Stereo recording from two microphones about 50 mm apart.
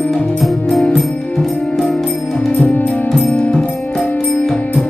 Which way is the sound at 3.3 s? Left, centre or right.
Centre.